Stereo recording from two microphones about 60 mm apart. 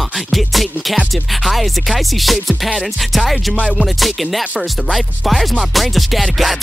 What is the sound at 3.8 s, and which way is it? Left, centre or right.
Music, centre.